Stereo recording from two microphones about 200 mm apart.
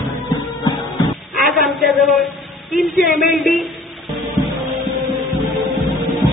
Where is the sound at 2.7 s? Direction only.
Centre (ahead or behind).